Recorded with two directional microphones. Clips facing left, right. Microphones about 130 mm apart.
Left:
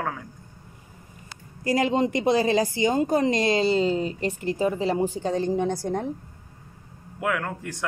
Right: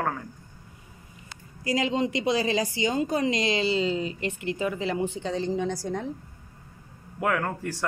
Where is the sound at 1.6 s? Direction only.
50° left (ahead or behind).